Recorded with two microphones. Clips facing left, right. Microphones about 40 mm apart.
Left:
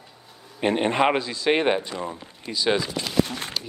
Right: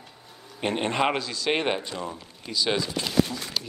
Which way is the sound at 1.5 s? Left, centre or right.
Centre.